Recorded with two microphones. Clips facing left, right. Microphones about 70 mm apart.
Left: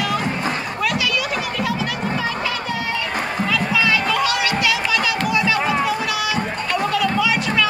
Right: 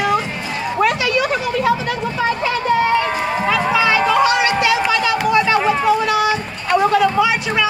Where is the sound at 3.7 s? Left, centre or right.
Right.